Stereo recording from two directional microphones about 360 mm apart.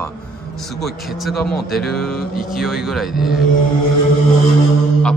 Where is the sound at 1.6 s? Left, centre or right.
Left.